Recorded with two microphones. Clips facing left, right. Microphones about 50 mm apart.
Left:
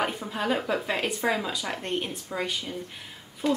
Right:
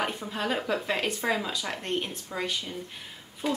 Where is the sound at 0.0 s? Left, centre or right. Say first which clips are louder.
Left 2 dB; centre.